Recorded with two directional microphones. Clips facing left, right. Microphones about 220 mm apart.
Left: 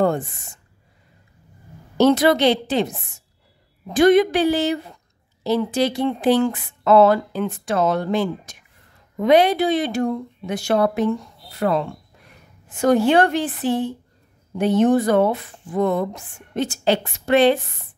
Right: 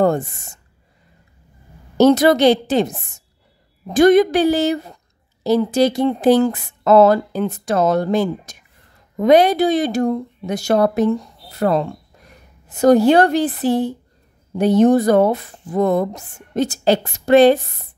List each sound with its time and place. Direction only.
0.0 s a woman's voice: 45° right (ahead or behind)
2.0 s a woman's voice: 45° right (ahead or behind)